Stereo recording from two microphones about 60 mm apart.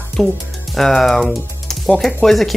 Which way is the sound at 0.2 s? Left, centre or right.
Centre.